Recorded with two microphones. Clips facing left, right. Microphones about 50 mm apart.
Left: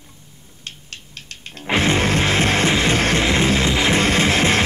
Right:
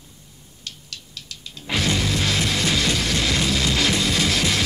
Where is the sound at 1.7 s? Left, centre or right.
Left.